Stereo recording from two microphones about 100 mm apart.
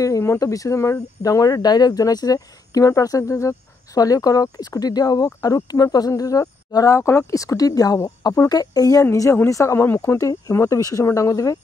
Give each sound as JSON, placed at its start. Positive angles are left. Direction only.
{"t": 0.0, "sound": "speech", "side_deg": 30}